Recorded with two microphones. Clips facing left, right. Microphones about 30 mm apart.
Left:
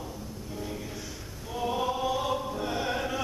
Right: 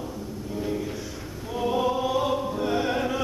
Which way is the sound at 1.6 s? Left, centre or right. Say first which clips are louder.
Right 4 dB; centre.